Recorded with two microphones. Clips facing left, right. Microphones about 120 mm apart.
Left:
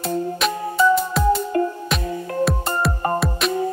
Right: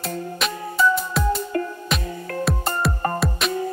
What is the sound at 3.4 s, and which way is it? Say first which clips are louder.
Music: left 2 dB; centre (ahead or behind).